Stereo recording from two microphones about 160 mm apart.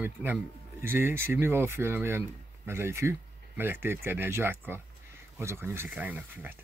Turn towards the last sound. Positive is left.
turn(degrees=-10)  # may be behind; listen again after turning